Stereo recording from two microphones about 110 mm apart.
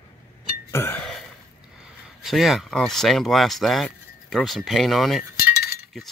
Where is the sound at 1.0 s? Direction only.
5° left (ahead or behind).